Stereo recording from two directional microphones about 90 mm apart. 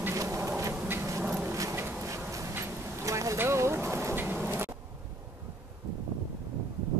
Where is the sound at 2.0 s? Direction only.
35° right (ahead or behind).